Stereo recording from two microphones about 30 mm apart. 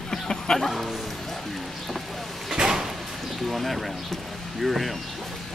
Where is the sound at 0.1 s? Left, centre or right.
Left.